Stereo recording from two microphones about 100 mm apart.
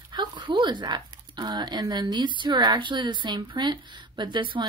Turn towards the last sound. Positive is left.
turn(degrees=-50)  # may be behind; listen again after turning